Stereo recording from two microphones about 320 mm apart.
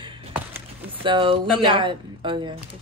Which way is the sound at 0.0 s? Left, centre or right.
Centre.